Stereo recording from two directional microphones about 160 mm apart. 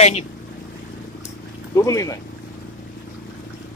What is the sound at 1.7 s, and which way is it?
Speech, 20° left (ahead or behind).